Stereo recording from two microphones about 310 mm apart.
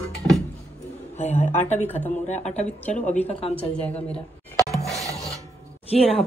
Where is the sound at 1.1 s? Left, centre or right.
Left.